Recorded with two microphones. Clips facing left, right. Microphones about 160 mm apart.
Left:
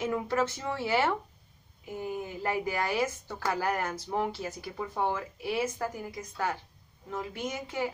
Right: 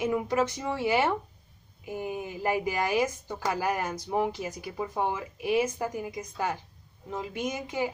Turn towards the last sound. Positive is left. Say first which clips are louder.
# right 2 dB
turn(degrees=-15)  # may be behind; listen again after turning